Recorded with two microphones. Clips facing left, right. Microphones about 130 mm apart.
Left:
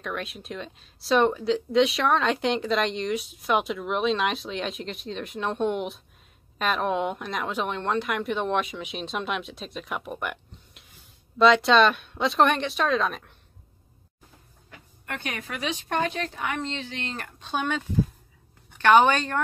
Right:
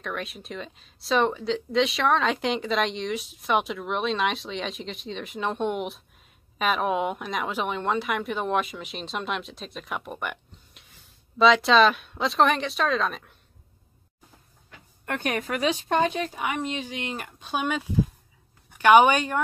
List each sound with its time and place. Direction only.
0.0 s speech: centre (ahead or behind)
15.0 s a woman's voice: 50° right (ahead or behind)
15.9 s a woman's voice: 15° right (ahead or behind)